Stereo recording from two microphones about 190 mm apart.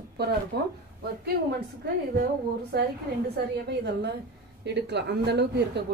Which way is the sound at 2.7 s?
55° right (ahead or behind).